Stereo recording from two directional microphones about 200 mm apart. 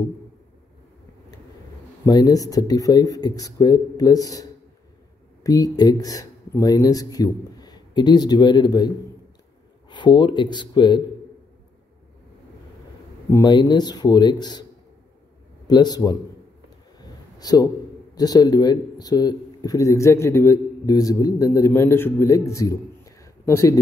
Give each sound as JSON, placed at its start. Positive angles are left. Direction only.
{"t": 2.0, "sound": "speech", "side_deg": 20}
{"t": 13.3, "sound": "a man's voice", "side_deg": 20}
{"t": 17.0, "sound": "a sound", "side_deg": 20}
{"t": 18.1, "sound": "speech", "side_deg": 20}